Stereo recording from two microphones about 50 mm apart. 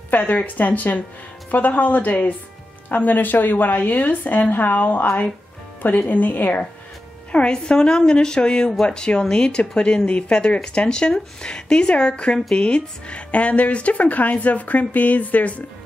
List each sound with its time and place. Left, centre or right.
0.2 s a woman's voice: left
7.3 s a woman's voice: centre